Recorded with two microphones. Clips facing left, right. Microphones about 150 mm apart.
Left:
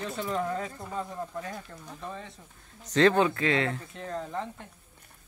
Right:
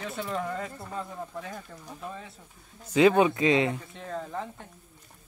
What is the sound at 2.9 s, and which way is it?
Speech, 10° right (ahead or behind).